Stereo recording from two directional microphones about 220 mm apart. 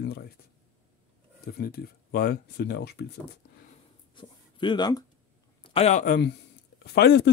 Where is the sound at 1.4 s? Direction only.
45° left (ahead or behind).